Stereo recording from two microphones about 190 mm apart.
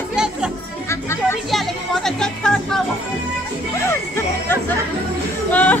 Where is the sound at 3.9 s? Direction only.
10° left (ahead or behind).